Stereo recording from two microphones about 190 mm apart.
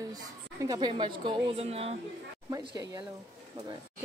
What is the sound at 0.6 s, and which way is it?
A woman's voice, 25° right (ahead or behind).